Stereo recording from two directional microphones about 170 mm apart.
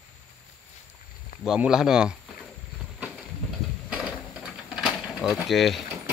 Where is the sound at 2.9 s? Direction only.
5° right (ahead or behind).